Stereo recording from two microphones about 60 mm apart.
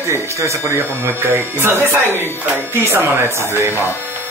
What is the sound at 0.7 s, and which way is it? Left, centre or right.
Speech, right.